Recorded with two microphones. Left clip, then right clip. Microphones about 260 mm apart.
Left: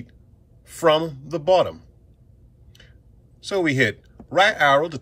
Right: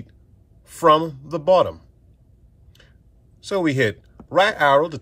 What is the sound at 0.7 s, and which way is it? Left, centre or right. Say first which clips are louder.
Speech: right 3 dB; right.